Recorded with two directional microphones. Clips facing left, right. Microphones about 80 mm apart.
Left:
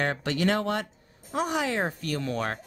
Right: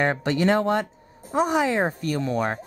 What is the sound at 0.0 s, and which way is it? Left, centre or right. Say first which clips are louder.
Speech: right 5 dB; right.